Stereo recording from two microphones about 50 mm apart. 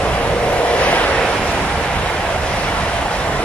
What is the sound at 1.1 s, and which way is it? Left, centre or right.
Waves, centre.